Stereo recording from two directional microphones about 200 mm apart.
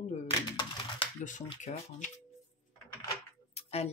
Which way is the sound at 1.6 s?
40° left (ahead or behind).